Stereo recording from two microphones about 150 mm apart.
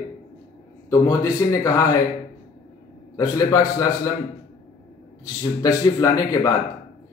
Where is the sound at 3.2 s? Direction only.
25° left (ahead or behind).